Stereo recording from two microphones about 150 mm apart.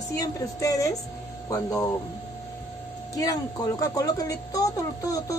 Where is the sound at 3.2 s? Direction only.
25° left (ahead or behind).